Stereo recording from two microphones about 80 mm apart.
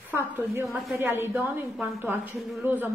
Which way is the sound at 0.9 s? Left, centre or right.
Right.